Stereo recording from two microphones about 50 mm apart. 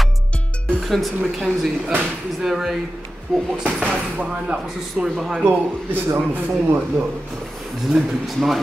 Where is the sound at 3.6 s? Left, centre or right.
Right.